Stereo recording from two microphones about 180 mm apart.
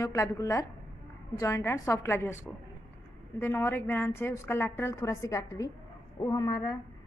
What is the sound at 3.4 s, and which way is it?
A woman's voice, 10° left (ahead or behind).